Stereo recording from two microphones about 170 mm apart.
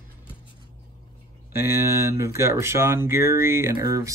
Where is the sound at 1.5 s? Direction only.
15° right (ahead or behind).